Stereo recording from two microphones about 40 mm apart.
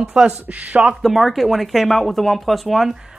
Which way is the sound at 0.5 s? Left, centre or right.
Right.